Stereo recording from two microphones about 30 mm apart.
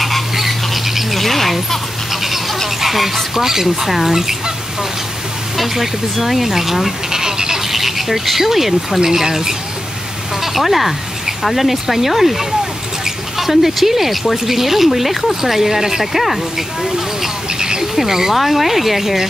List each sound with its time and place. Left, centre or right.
0.0 s squawk: centre
1.1 s bird: centre
2.8 s speech: centre
3.3 s speech: centre
5.8 s speech: centre
7.1 s a sound: centre
7.7 s speech: centre
10.4 s speech: centre
16.1 s speech: centre
17.6 s a sound: right
17.9 s speech: centre
18.3 s speech: centre